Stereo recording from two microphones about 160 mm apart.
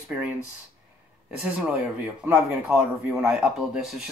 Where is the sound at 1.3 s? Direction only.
5° right (ahead or behind).